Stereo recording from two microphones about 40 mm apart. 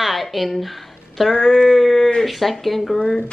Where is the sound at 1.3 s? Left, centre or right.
Left.